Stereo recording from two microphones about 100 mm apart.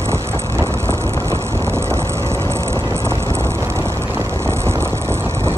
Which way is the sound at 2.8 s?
25° right (ahead or behind).